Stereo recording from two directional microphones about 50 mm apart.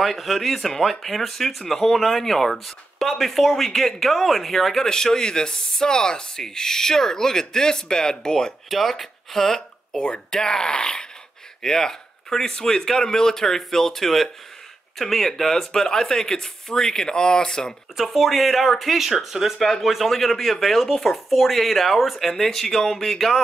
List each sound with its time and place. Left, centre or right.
0.0 s speech: centre
8.6 s speech: centre
17.9 s speech: centre